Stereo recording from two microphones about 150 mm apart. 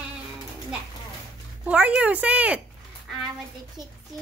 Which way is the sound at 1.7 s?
10° right (ahead or behind).